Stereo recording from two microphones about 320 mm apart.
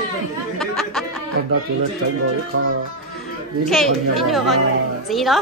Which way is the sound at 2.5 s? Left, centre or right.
Right.